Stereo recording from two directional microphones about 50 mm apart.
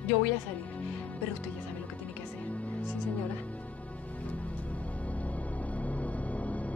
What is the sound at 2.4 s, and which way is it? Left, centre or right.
Music, left.